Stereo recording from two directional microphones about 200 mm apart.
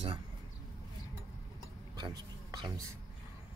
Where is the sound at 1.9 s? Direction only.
20° right (ahead or behind).